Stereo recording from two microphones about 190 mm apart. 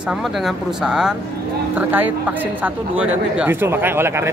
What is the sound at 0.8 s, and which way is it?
Speech, 5° right (ahead or behind).